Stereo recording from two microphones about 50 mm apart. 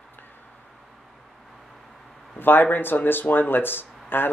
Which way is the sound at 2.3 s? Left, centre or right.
Left.